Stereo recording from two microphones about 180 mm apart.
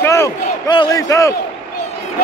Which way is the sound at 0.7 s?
20° left (ahead or behind).